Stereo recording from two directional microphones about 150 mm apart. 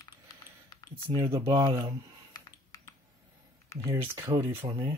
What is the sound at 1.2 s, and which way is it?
Speech, 40° right (ahead or behind).